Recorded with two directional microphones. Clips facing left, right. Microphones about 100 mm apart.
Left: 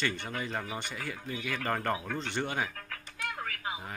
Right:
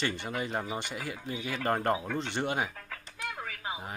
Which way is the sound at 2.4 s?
10° right (ahead or behind).